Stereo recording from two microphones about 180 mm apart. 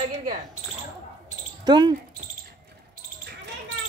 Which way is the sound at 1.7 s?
25° right (ahead or behind).